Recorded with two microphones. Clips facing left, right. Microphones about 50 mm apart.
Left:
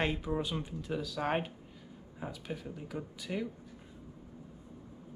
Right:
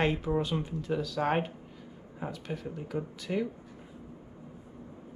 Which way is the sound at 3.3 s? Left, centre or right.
Right.